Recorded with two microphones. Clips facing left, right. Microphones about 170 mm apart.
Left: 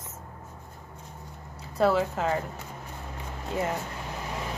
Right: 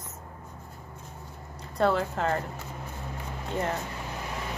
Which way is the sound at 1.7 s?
5° left (ahead or behind).